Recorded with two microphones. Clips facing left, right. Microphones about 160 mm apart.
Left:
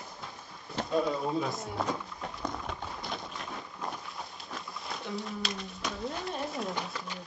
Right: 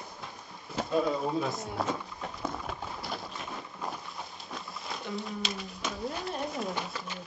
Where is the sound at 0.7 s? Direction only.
5° right (ahead or behind).